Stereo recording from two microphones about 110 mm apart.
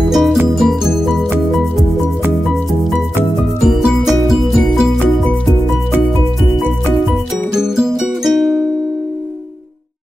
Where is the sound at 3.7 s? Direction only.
Centre (ahead or behind).